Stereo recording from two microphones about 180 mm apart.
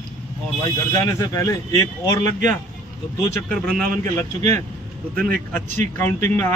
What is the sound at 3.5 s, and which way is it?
Speech, 5° left (ahead or behind).